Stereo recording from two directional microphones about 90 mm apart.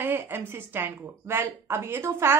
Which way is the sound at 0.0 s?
25° right (ahead or behind).